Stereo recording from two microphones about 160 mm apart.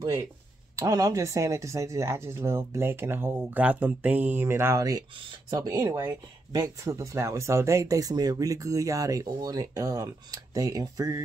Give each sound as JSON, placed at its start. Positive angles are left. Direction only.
{"t": 0.7, "sound": "speech", "side_deg": -20}